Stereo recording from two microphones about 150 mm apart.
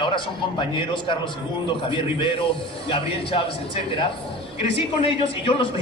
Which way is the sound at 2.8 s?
35° left (ahead or behind).